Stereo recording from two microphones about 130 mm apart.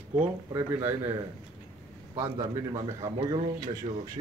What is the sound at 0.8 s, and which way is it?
Speech, 20° right (ahead or behind).